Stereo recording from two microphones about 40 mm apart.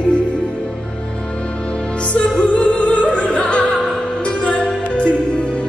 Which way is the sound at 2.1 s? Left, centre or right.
Left.